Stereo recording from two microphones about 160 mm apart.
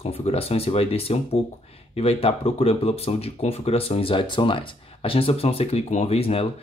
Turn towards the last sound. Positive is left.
turn(degrees=35)  # may be behind; listen again after turning